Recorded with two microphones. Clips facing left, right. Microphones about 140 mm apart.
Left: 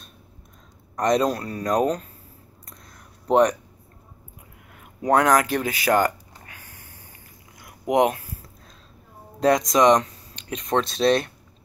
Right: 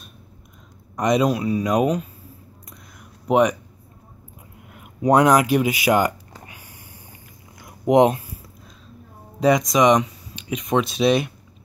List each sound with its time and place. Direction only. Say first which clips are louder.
0.9 s a man's voice: right 2 dB; 5° right (ahead or behind)
3.3 s speech: even; 5° right (ahead or behind)
5.0 s speech: right 3 dB; 15° right (ahead or behind)
7.6 s a sound: right 5 dB; 25° right (ahead or behind)
9.4 s speech: right 1 dB; 5° right (ahead or behind)